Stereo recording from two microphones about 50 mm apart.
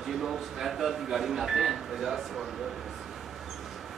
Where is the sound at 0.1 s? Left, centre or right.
Centre.